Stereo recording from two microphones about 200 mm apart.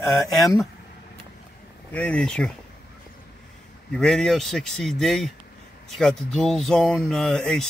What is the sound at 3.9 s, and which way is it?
Speech, centre (ahead or behind).